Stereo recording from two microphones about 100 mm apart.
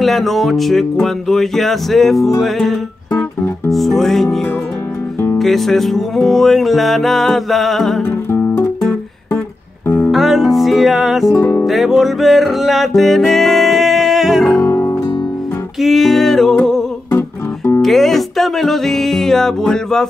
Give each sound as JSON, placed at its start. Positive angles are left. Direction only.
{"t": 0.0, "sound": "music", "side_deg": 0}
{"t": 5.4, "sound": "music", "side_deg": 0}
{"t": 8.3, "sound": "music", "side_deg": 25}
{"t": 9.8, "sound": "music", "side_deg": 20}
{"t": 10.1, "sound": "music", "side_deg": 0}
{"t": 14.6, "sound": "music", "side_deg": 25}
{"t": 15.8, "sound": "music", "side_deg": 0}
{"t": 17.8, "sound": "music", "side_deg": 5}